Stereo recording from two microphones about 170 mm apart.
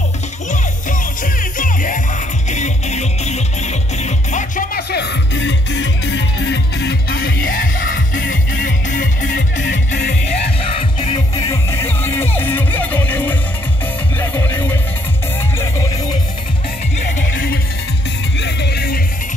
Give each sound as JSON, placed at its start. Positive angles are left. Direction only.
{"t": 0.5, "sound": "music", "side_deg": 50}
{"t": 4.9, "sound": "music", "side_deg": 90}
{"t": 10.6, "sound": "music", "side_deg": 35}
{"t": 11.4, "sound": "music", "side_deg": 15}
{"t": 18.4, "sound": "music", "side_deg": 80}